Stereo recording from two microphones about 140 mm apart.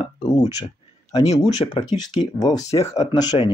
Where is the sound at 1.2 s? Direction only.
50° left (ahead or behind).